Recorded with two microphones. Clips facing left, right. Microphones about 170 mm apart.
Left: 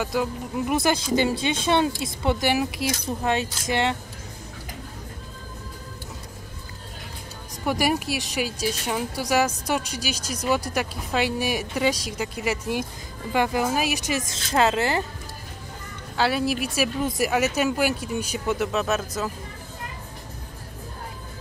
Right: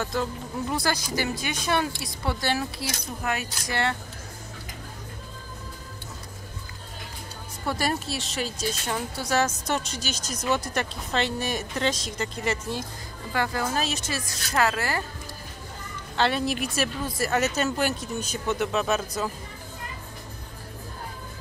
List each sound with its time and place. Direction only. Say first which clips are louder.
0.0 s speech: left 3 dB; 10° left (ahead or behind)
0.7 s speech: left 7 dB; 25° left (ahead or behind)
7.6 s speech: left 4 dB; 15° left (ahead or behind)
16.2 s a woman's voice: left 2 dB; 5° left (ahead or behind)
17.0 s speech: left 5 dB; 20° left (ahead or behind)
17.3 s speech: left 2 dB; 10° left (ahead or behind)